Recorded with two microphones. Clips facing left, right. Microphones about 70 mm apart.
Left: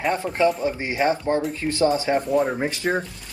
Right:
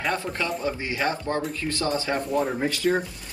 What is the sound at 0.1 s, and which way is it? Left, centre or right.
Speech, left.